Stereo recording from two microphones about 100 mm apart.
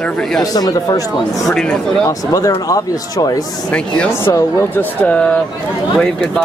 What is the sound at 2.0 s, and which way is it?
Speech, 35° left (ahead or behind).